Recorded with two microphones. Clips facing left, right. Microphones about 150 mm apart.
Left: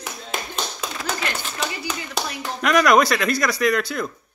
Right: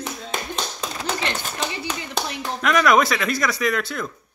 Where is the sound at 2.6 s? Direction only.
Centre (ahead or behind).